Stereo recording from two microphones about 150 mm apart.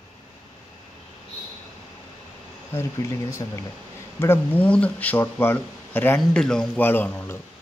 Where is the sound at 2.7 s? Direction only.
20° left (ahead or behind).